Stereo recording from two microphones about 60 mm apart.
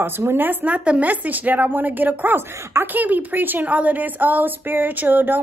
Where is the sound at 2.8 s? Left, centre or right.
Right.